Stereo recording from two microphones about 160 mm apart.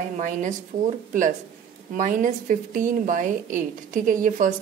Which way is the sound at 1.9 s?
55° right (ahead or behind).